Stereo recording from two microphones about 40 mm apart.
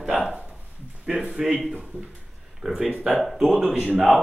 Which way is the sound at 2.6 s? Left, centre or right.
Centre.